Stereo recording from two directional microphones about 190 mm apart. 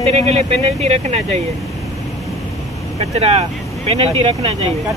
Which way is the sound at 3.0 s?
35° right (ahead or behind).